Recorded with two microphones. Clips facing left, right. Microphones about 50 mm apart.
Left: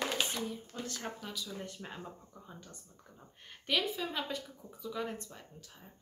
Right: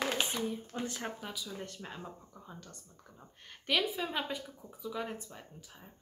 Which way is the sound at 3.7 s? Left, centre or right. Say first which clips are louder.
Right 1 dB; centre.